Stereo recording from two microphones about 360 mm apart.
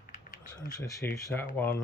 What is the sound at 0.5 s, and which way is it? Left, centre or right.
Speech, centre.